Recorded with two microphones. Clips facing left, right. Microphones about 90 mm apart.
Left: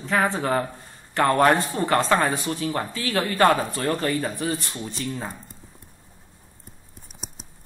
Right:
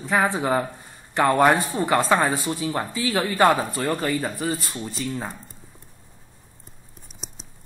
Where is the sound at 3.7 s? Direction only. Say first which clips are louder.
Even; 5° right (ahead or behind).